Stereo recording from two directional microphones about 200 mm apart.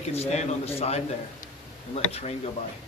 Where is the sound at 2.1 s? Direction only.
30° left (ahead or behind).